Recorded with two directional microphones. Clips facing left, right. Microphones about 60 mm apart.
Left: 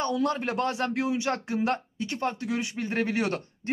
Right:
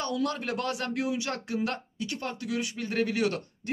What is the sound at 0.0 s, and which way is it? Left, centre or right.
A man's voice, left.